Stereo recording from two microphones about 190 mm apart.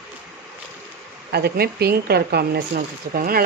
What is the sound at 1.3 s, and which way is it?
Speech, 55° right (ahead or behind).